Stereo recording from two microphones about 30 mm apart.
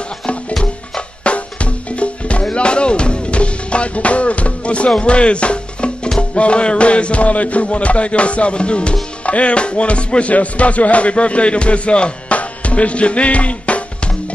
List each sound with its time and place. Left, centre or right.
1.2 s drum: left
2.5 s music: left